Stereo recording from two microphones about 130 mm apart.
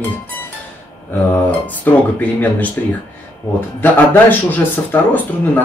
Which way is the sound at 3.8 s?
15° left (ahead or behind).